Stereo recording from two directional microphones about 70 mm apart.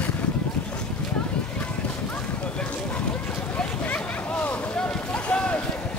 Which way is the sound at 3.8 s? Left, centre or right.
Left.